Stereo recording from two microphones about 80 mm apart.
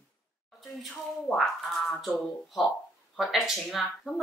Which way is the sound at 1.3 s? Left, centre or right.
Centre.